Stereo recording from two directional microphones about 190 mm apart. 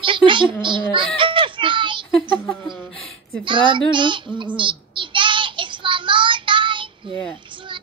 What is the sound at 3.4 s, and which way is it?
A child's voice, 25° right (ahead or behind).